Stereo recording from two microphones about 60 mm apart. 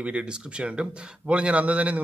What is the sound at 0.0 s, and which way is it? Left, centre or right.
A man's voice, centre.